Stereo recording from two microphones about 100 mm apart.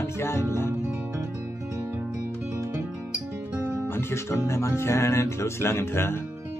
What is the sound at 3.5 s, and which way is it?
Music, 20° right (ahead or behind).